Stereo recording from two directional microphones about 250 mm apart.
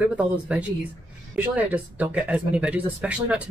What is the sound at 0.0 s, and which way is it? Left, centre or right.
Speech, centre.